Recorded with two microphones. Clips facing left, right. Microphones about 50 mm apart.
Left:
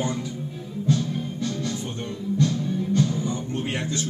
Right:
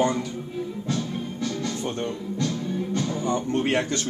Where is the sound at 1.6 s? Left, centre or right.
Right.